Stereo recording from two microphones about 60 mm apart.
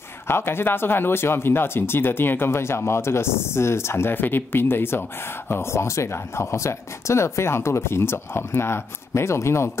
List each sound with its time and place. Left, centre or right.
0.3 s speech: left